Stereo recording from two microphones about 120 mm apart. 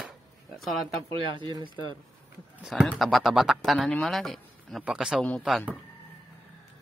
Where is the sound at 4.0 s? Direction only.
Centre (ahead or behind).